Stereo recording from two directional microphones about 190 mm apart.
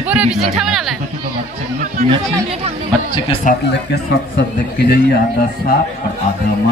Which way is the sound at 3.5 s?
45° left (ahead or behind).